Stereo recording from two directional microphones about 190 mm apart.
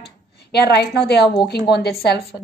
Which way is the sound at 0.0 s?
60° left (ahead or behind).